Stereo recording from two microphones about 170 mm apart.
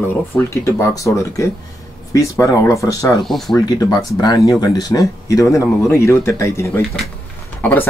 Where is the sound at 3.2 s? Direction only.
Centre (ahead or behind).